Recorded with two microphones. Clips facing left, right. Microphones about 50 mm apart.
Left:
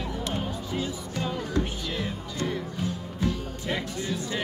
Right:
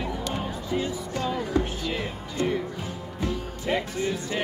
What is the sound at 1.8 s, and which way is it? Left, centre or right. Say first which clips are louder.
Music: right 2 dB; right.